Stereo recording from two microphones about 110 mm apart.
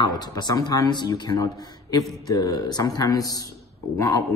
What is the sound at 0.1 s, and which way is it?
A man's voice, 40° left (ahead or behind).